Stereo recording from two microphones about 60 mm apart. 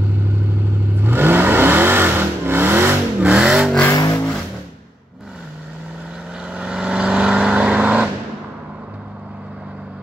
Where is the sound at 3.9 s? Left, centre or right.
Left.